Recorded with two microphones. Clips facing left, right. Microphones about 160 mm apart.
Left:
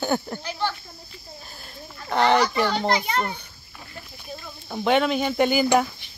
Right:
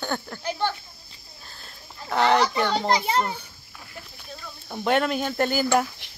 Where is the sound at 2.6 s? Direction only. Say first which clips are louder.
Even; 5° left (ahead or behind).